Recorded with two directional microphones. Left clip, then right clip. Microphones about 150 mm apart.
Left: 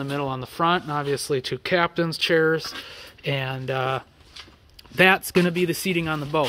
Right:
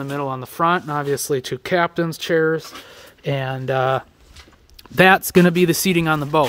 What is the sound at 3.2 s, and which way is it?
Speech, 35° right (ahead or behind).